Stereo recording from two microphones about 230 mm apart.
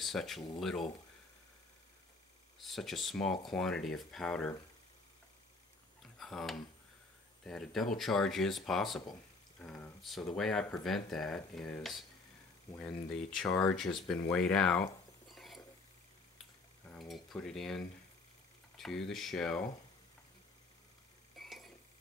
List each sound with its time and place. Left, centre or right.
0.0 s speech: centre
2.6 s speech: centre
6.1 s speech: centre
16.9 s speech: centre
21.4 s a sound: centre